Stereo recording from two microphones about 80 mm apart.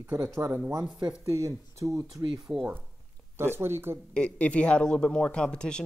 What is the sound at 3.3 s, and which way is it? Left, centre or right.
Speech, right.